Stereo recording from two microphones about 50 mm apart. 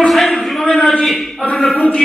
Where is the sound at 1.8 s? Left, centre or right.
Left.